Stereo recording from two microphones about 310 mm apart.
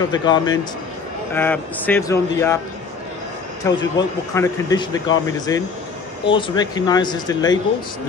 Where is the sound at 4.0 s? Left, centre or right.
Centre.